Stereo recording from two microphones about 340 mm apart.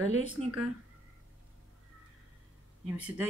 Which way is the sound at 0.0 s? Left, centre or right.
Right.